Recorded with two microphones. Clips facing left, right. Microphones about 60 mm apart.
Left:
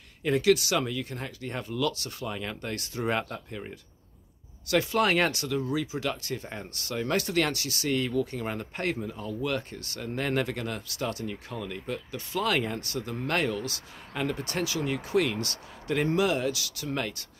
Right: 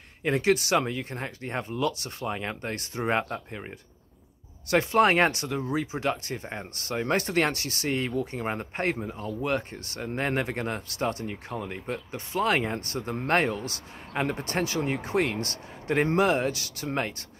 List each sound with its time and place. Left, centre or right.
0.2 s speech: right